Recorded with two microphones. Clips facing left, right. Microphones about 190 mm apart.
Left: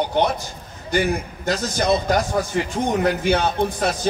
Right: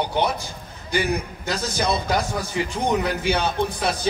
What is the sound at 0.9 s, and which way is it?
A man's voice, 45° left (ahead or behind).